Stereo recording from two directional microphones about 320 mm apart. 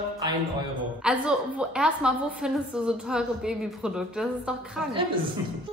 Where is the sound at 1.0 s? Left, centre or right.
Centre.